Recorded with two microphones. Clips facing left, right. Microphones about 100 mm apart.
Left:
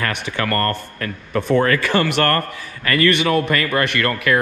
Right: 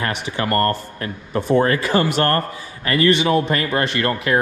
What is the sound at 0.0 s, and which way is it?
Speech, 25° right (ahead or behind).